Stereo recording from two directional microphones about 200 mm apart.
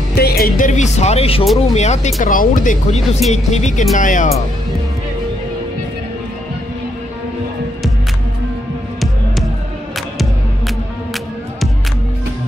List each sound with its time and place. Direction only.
0.1 s speech: 50° left (ahead or behind)